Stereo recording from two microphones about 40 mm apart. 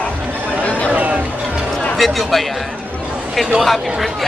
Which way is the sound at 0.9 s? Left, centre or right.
Right.